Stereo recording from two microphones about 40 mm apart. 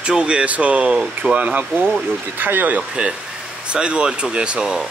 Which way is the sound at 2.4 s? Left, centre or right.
Right.